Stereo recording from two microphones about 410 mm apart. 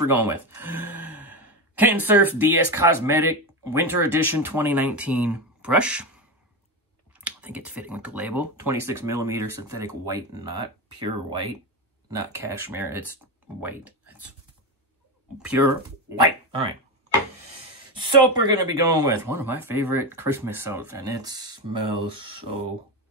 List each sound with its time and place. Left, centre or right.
0.0 s speech: centre
15.4 s speech: centre
17.9 s speech: right
18.6 s speech: centre
21.7 s speech: right